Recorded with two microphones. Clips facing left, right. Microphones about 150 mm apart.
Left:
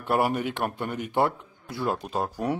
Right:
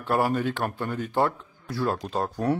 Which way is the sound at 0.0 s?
15° left (ahead or behind).